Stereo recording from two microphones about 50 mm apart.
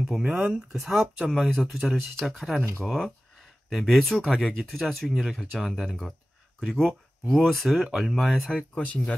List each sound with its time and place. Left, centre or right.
0.0 s speech: centre
8.3 s speech: centre
8.7 s speech: left